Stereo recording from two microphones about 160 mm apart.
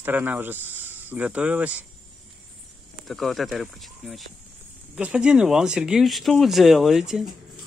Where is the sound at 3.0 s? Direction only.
Centre (ahead or behind).